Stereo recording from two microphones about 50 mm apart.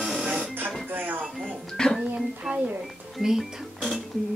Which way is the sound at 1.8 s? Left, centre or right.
Centre.